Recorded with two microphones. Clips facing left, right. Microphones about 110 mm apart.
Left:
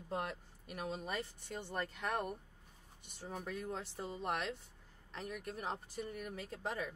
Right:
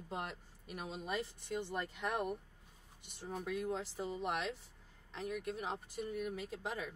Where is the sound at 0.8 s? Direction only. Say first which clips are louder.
Even; centre (ahead or behind).